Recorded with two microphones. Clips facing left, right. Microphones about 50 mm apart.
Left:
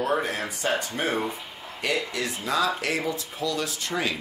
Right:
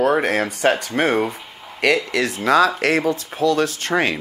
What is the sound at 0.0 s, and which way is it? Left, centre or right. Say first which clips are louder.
Speech: right 8 dB; right.